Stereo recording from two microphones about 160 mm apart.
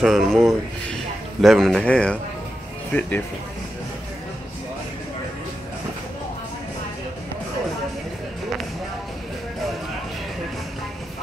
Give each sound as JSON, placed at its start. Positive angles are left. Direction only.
{"t": 0.0, "sound": "speech", "side_deg": 0}